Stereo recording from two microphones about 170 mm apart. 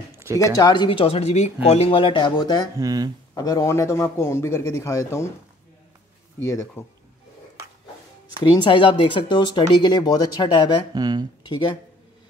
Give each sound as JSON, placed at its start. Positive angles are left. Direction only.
{"t": 0.4, "sound": "speech", "side_deg": 25}
{"t": 2.8, "sound": "speech", "side_deg": -20}
{"t": 3.3, "sound": "a man's voice", "side_deg": 20}
{"t": 6.4, "sound": "a man's voice", "side_deg": 15}
{"t": 8.4, "sound": "speech", "side_deg": 30}
{"t": 11.0, "sound": "speech", "side_deg": -25}
{"t": 11.4, "sound": "speech", "side_deg": 25}